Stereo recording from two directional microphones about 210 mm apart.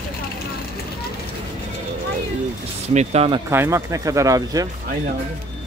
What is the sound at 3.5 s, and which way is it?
Speech, 10° right (ahead or behind).